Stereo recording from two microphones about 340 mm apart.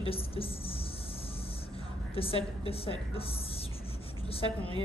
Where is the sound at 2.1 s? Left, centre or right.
Centre.